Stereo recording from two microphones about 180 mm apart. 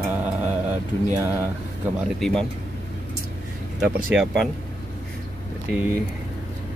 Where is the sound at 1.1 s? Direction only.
15° right (ahead or behind).